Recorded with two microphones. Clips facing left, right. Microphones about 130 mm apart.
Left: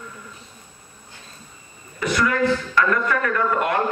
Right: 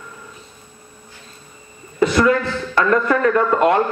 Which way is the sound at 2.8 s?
30° right (ahead or behind).